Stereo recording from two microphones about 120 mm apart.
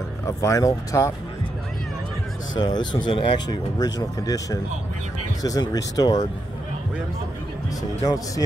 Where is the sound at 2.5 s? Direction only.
35° left (ahead or behind).